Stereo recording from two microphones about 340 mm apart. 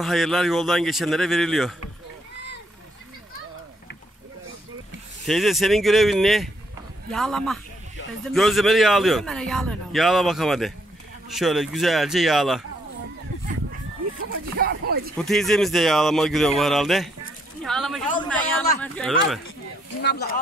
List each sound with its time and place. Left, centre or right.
0.0 s a man's voice: centre
5.2 s a man's voice: centre
14.6 s speech: right
15.1 s a man's voice: centre
17.6 s a sound: centre
20.0 s speech: left